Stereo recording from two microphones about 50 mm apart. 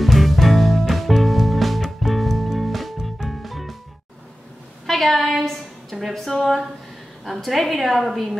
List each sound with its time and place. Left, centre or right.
0.0 s music: centre
4.8 s a woman's voice: centre